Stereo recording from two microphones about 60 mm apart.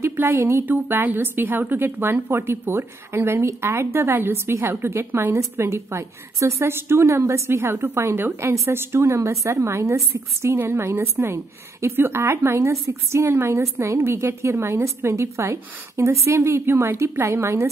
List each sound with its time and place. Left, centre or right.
0.0 s a woman's voice: right
10.6 s speech: right